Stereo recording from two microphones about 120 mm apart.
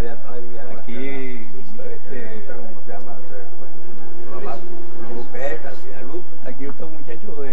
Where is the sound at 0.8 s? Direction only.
5° right (ahead or behind).